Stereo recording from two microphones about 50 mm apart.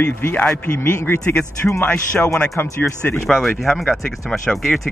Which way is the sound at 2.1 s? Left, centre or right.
Centre.